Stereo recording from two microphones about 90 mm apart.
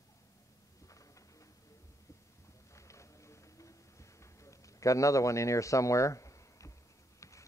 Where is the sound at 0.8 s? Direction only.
40° left (ahead or behind).